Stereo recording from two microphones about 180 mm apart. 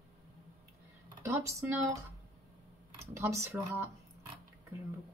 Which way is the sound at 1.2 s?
15° right (ahead or behind).